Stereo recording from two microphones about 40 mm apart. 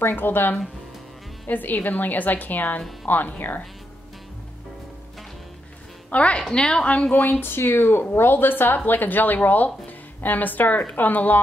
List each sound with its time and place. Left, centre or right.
0.0 s speech: left
1.5 s a woman's voice: left
6.0 s a woman's voice: left
6.5 s a woman's voice: centre
7.2 s a woman's voice: left